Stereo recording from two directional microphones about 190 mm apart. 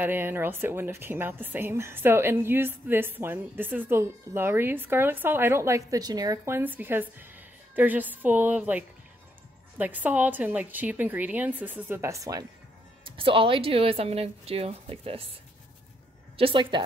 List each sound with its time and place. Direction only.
0.0 s speech: 10° right (ahead or behind); by 15.2 s 30° right (ahead or behind)
16.3 s speech: 25° right (ahead or behind)